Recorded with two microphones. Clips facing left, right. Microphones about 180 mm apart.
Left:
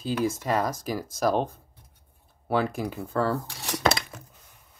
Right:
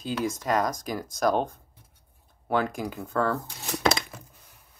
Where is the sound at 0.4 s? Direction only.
5° left (ahead or behind).